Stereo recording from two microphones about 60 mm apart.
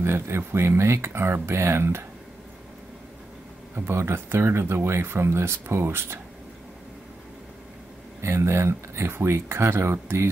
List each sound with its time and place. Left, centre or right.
0.0 s speech: right
3.9 s speech: right
8.2 s speech: right